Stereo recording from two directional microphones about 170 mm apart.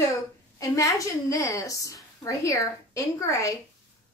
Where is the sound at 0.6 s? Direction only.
20° left (ahead or behind).